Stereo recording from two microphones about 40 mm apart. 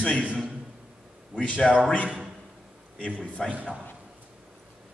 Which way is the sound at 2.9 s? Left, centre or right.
Left.